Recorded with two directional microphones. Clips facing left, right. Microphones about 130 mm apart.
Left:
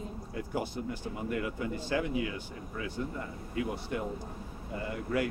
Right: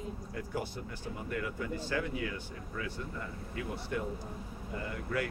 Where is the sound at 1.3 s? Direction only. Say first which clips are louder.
Left 2 dB; 20° left (ahead or behind).